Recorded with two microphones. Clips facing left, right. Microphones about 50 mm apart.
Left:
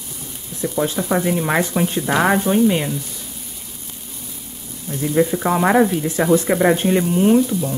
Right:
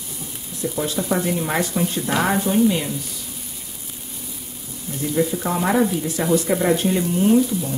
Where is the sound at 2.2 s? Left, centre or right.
Left.